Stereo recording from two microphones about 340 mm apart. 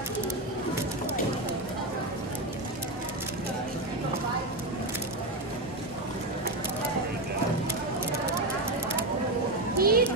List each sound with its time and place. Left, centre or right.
9.8 s children playing: right